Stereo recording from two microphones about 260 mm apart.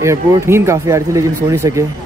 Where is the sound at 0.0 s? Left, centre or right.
Centre.